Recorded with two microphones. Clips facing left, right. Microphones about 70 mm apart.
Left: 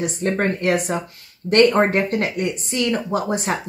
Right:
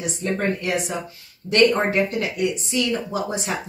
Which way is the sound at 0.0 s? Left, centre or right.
Left.